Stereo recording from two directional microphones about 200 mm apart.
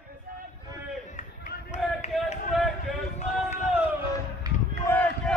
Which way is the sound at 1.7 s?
35° left (ahead or behind).